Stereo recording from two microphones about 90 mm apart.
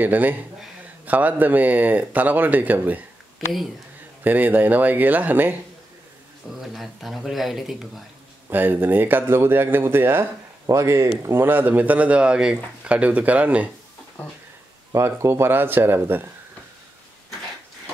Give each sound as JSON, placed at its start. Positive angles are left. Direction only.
{"t": 0.0, "sound": "speech", "side_deg": -20}
{"t": 3.4, "sound": "speech", "side_deg": 0}
{"t": 4.2, "sound": "speech", "side_deg": -20}
{"t": 6.6, "sound": "speech", "side_deg": 0}
{"t": 8.5, "sound": "speech", "side_deg": -25}
{"t": 11.4, "sound": "a man's voice", "side_deg": -20}
{"t": 14.2, "sound": "speech", "side_deg": 20}
{"t": 14.9, "sound": "speech", "side_deg": -30}